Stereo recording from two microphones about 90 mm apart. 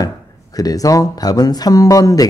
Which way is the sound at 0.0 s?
40° left (ahead or behind).